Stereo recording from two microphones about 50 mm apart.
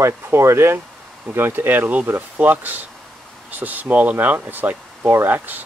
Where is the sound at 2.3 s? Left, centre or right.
Right.